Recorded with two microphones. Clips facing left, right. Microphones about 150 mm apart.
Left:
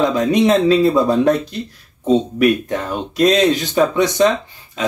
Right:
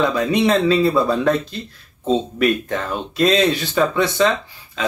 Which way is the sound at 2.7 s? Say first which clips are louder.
Left 2 dB; 20° left (ahead or behind).